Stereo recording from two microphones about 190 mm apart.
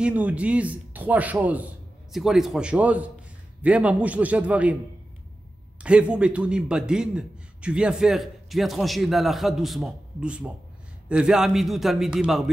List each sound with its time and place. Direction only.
0.0 s a man's voice: 5° right (ahead or behind)
5.8 s a man's voice: 5° right (ahead or behind)